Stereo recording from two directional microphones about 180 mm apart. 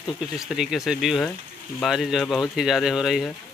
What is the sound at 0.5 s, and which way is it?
Speech, centre (ahead or behind).